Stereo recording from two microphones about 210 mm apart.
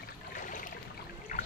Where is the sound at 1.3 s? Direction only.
35° left (ahead or behind).